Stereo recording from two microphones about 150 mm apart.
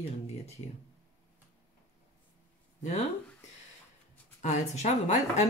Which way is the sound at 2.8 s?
45° left (ahead or behind).